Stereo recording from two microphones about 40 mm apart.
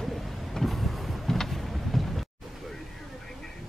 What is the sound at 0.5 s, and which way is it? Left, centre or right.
Vehicle, centre.